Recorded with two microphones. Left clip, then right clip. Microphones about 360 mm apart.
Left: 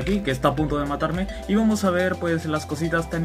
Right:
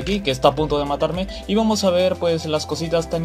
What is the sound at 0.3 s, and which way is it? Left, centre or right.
Speech, centre.